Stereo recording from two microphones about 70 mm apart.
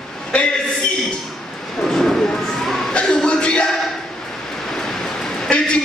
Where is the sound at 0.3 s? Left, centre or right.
Centre.